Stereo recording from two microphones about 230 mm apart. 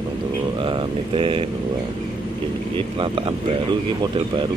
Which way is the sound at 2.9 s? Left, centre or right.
Right.